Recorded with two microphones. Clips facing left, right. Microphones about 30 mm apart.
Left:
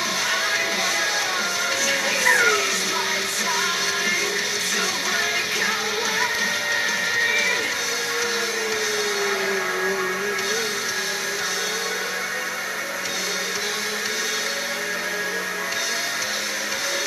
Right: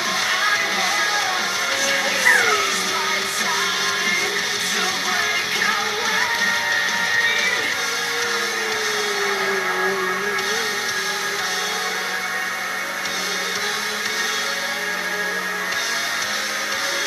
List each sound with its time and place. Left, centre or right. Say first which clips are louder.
1.9 s music: right 3 dB; centre
6.1 s music: right 5 dB; centre